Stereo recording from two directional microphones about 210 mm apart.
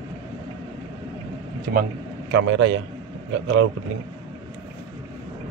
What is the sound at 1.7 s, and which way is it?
A man's voice, 50° right (ahead or behind).